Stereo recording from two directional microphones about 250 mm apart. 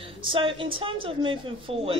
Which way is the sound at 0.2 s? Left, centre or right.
Right.